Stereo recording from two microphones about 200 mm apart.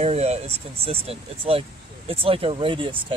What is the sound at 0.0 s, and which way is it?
Speech, 30° right (ahead or behind).